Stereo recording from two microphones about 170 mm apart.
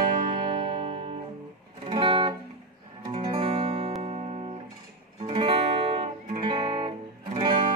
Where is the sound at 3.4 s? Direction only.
35° right (ahead or behind).